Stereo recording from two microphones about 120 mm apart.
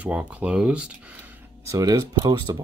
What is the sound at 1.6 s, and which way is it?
Speech, 30° right (ahead or behind).